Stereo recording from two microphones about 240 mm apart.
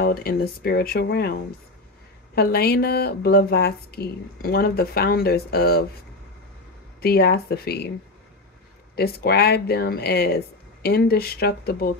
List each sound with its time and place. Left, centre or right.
0.0 s a woman's voice: left
7.0 s a woman's voice: left
8.9 s a woman's voice: left